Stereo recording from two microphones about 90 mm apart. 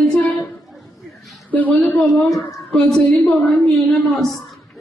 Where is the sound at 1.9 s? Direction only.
Centre (ahead or behind).